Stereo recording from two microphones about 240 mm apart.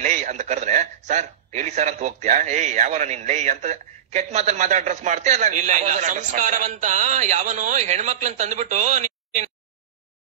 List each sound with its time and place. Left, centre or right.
0.0 s a man's voice: right